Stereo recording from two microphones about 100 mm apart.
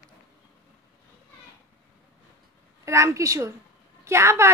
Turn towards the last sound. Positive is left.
turn(degrees=-25)  # may be behind; listen again after turning